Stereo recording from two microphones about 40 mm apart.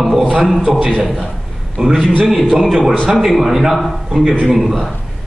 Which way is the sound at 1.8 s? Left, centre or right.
Right.